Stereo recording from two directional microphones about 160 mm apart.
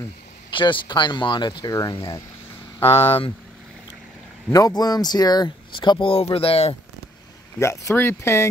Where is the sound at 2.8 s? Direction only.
35° left (ahead or behind).